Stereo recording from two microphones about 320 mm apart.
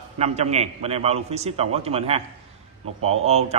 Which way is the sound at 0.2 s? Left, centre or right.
Right.